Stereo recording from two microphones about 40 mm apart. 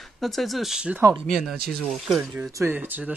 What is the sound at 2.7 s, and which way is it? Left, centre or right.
Speech, right.